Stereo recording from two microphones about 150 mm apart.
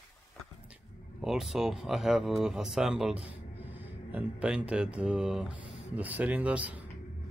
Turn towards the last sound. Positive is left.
turn(degrees=-10)  # may be behind; listen again after turning